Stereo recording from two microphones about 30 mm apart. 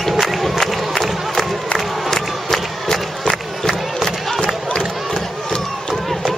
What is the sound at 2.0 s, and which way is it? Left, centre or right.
Crowd, centre.